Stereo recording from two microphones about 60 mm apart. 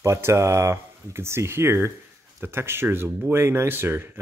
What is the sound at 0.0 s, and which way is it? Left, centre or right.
Speech, right.